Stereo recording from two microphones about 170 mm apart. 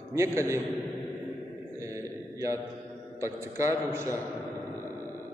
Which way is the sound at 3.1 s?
15° right (ahead or behind).